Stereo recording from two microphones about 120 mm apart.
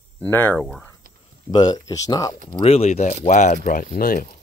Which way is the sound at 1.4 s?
35° left (ahead or behind).